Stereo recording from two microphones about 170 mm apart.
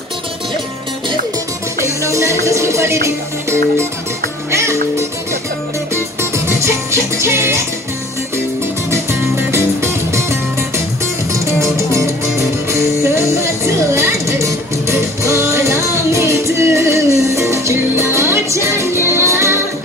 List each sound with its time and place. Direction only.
2.0 s music: 15° right (ahead or behind)
4.5 s music: 15° right (ahead or behind)
6.3 s music: 15° right (ahead or behind)
9.5 s music: 15° right (ahead or behind)
11.6 s music: 15° right (ahead or behind)
13.9 s music: 15° right (ahead or behind)